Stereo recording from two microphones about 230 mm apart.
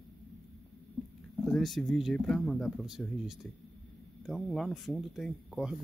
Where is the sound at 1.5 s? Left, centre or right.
Centre.